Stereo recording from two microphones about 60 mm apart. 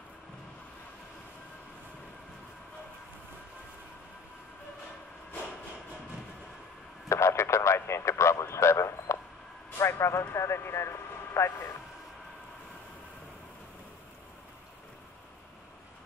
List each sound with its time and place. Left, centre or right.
7.1 s speech: left